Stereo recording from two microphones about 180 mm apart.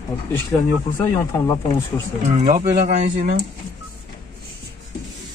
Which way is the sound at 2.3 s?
45° right (ahead or behind).